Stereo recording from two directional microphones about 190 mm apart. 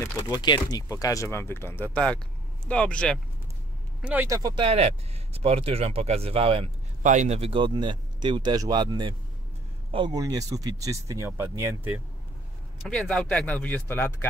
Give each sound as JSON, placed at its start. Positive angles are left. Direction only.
{"t": 0.0, "sound": "speech", "side_deg": 20}
{"t": 4.0, "sound": "speech", "side_deg": -10}
{"t": 4.4, "sound": "speech", "side_deg": -25}
{"t": 12.8, "sound": "speech", "side_deg": 0}